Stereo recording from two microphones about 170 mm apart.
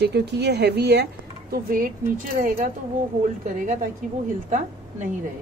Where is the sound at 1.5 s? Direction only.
55° right (ahead or behind).